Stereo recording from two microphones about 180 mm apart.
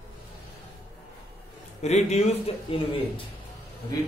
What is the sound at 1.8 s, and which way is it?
A man's voice, 40° left (ahead or behind).